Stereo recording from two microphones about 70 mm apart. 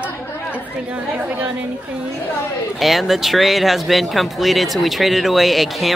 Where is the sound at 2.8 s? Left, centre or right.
Centre.